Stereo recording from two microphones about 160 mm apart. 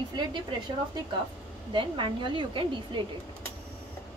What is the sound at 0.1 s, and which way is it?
A woman's voice, 30° right (ahead or behind).